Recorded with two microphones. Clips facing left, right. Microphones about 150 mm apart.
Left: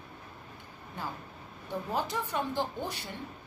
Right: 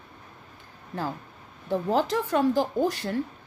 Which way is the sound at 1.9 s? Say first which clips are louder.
Right 9 dB; 90° right.